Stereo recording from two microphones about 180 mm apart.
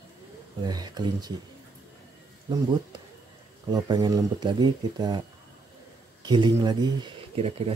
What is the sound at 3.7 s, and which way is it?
Speech, 20° right (ahead or behind).